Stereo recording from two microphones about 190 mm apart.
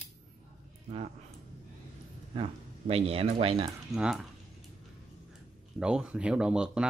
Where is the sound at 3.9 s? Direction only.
Centre (ahead or behind).